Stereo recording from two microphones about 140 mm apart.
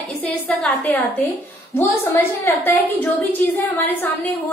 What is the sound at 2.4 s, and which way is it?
A woman's voice, 20° left (ahead or behind).